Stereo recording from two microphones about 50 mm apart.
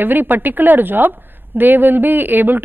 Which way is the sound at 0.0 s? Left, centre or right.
Right.